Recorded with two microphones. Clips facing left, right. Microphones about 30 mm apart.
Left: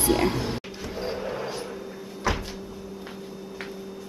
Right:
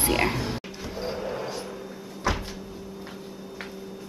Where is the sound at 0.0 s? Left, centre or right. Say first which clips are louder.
Left 1 dB; right.